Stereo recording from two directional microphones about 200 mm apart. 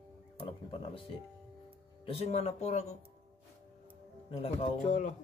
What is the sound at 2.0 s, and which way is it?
Speech, 30° left (ahead or behind).